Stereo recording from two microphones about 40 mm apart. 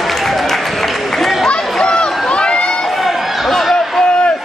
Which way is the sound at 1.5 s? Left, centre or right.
Left.